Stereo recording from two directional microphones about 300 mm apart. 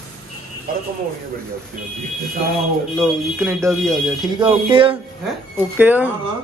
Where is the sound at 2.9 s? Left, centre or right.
Centre.